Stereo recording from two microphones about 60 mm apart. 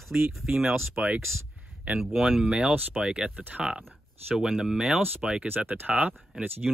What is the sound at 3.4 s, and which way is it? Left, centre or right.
Speech, right.